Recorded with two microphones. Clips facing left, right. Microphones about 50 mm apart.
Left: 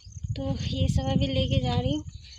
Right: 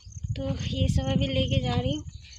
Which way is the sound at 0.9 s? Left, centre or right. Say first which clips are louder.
Even; right.